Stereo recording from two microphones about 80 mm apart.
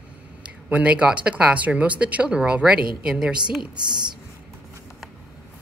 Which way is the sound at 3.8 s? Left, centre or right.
Right.